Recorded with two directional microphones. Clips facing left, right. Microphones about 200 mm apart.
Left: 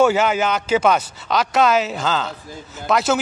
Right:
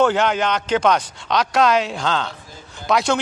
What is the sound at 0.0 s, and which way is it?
Speech, 5° left (ahead or behind).